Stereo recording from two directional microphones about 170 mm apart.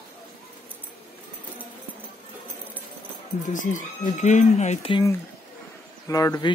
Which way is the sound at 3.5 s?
50° left (ahead or behind).